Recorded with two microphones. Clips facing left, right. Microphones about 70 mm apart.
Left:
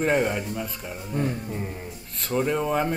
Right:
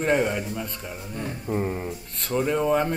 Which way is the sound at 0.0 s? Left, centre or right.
Centre.